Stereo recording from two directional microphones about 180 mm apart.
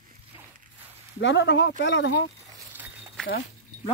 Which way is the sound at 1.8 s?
85° left.